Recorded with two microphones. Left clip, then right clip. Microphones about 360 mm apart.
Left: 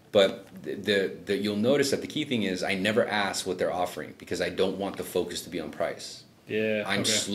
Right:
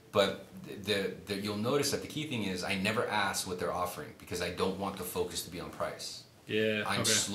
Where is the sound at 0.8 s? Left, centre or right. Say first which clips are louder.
Left 7 dB; right.